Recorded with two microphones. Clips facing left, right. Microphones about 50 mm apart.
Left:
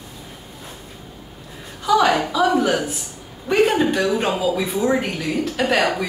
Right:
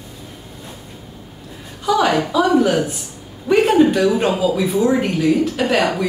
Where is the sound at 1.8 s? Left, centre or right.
Centre.